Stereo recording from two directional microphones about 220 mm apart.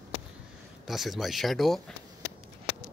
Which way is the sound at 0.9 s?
Centre (ahead or behind).